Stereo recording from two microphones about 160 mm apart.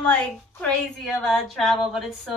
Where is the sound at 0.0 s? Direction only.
5° left (ahead or behind).